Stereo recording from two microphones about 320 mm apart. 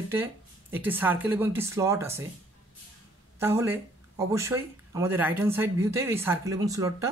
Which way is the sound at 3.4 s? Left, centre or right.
Centre.